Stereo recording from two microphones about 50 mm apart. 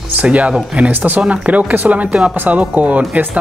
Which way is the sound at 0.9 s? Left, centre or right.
Right.